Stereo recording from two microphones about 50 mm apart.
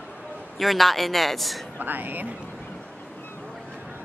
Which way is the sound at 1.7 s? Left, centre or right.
Right.